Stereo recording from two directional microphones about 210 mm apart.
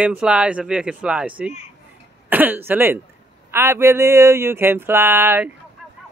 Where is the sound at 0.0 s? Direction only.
5° right (ahead or behind).